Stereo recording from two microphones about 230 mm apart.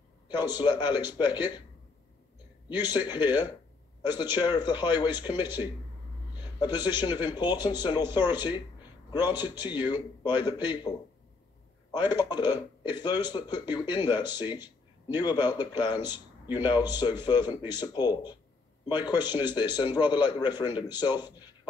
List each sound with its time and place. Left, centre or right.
0.3 s speech: centre
2.9 s speech: centre
6.3 s a sound: centre
6.9 s speech: centre
11.9 s speech: centre